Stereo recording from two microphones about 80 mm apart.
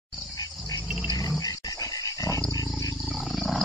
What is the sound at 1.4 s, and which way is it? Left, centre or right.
Dog, left.